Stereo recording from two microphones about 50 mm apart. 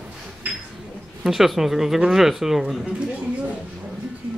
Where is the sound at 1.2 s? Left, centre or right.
Centre.